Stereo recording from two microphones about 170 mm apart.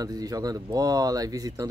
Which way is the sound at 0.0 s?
20° right (ahead or behind).